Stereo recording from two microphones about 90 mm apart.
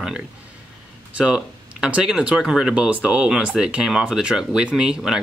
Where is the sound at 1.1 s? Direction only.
10° right (ahead or behind).